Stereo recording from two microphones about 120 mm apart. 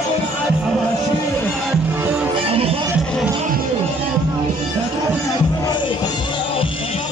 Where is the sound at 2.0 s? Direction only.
15° right (ahead or behind).